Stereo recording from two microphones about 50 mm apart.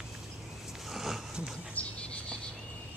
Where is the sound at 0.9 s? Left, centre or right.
Centre.